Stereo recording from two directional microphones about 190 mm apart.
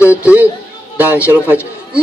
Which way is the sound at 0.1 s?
10° right (ahead or behind).